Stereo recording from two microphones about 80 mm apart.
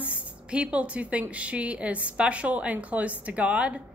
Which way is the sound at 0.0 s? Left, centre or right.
Centre.